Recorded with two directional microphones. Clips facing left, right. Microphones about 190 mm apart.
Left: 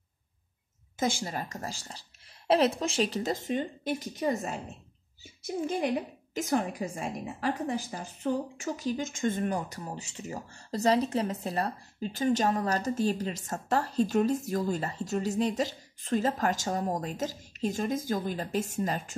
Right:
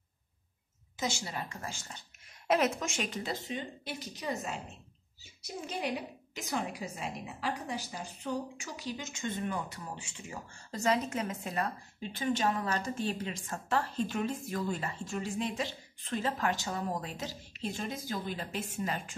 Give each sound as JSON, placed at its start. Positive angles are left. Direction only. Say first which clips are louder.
{"t": 0.9, "sound": "a woman's voice", "louder": "left 5 dB", "side_deg": 50}